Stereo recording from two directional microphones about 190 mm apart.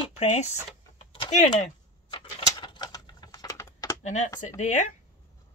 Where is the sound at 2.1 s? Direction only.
25° left (ahead or behind).